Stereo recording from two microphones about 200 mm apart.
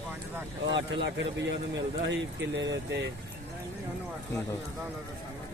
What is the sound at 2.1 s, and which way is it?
Speech, 60° right (ahead or behind).